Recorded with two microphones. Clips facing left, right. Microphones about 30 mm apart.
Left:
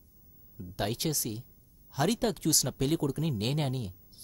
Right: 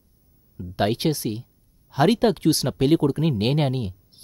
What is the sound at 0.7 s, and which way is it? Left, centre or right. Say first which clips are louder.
Speech: right 10 dB; right.